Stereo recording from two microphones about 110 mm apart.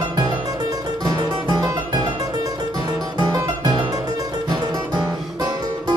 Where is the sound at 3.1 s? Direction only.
35° right (ahead or behind).